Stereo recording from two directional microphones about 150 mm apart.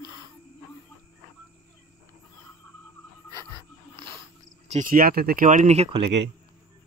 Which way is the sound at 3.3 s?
30° right (ahead or behind).